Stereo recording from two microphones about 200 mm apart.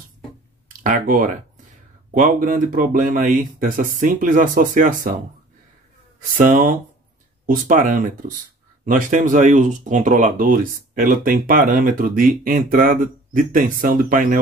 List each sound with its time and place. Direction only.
0.8 s speech: 40° right (ahead or behind)
6.3 s speech: 40° right (ahead or behind)